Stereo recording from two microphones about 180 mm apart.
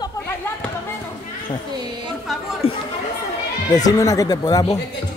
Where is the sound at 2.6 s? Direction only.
35° left (ahead or behind).